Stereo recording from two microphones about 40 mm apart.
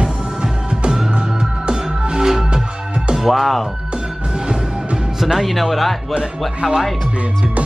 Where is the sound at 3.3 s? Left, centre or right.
Centre.